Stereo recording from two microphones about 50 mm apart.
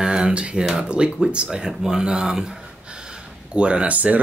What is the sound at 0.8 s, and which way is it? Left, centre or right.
Speech, centre.